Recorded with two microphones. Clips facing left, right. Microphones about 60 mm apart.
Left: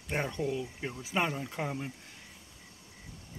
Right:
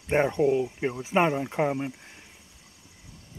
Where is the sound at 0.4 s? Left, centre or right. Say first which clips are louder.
Right 10 dB; right.